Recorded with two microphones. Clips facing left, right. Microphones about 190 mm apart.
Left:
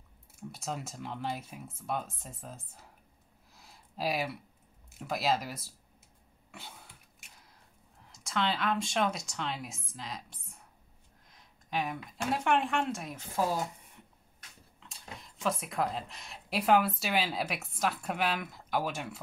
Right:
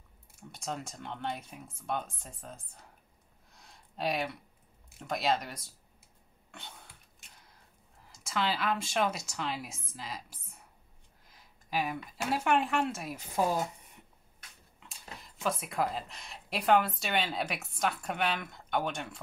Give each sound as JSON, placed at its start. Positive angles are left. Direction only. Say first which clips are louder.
{"t": 0.5, "sound": "speech", "louder": "even", "side_deg": 5}
{"t": 3.5, "sound": "a sound", "louder": "left 1 dB", "side_deg": 5}
{"t": 4.9, "sound": "speech", "louder": "even", "side_deg": 0}
{"t": 6.5, "sound": "a sound", "louder": "left 1 dB", "side_deg": 5}
{"t": 8.1, "sound": "speech", "louder": "even", "side_deg": 0}
{"t": 14.8, "sound": "speech", "louder": "left 1 dB", "side_deg": 0}